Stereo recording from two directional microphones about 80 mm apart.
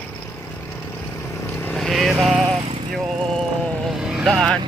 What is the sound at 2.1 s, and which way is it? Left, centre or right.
Speech, centre.